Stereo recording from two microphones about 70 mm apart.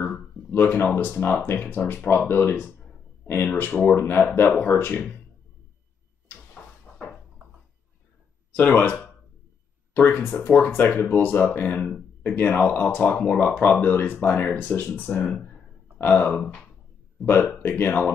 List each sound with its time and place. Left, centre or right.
0.5 s speech: left
6.5 s a sound: centre
8.5 s speech: left
15.2 s speech: centre
16.0 s speech: left
17.2 s speech: centre
17.6 s speech: left